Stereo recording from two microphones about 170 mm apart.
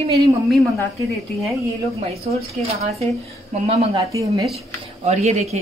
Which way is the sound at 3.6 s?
40° right (ahead or behind).